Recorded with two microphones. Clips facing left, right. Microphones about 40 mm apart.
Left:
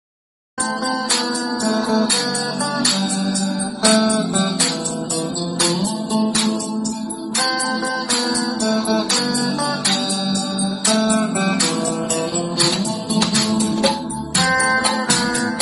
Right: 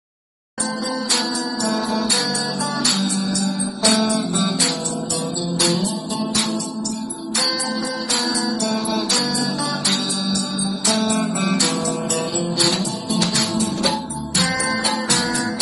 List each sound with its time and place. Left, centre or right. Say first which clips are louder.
2.8 s music: left 1 dB; left
8.8 s music: left 2 dB; left
12.5 s music: left 1 dB; left